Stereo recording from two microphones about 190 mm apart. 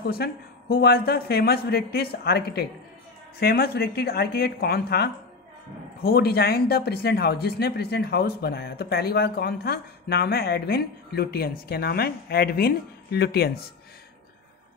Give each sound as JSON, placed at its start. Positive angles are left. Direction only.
{"t": 0.0, "sound": "speech", "side_deg": 55}